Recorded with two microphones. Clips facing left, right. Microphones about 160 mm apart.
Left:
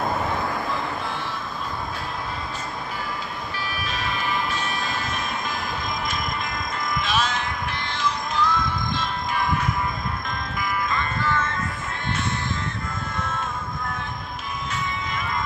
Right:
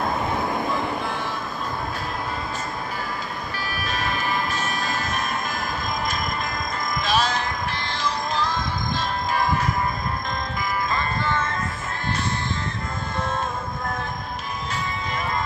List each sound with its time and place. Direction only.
3.8 s vehicle: 45° right (ahead or behind)
7.0 s music: 35° right (ahead or behind)
10.9 s music: 35° right (ahead or behind)
13.2 s music: 35° right (ahead or behind)